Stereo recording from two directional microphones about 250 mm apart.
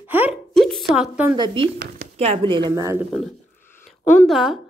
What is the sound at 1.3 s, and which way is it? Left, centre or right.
Speech, centre.